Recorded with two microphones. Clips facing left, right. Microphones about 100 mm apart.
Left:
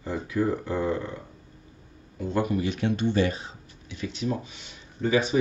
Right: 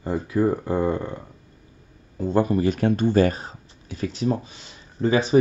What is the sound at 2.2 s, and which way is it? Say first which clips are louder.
Speech: right 6 dB; 35° right (ahead or behind).